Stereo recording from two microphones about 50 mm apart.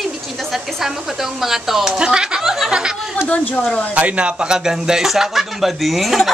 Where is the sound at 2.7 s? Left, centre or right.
Centre.